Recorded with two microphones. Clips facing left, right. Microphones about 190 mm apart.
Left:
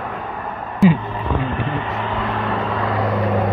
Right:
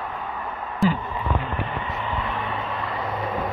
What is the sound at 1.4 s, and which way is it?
Vehicle, 90° left.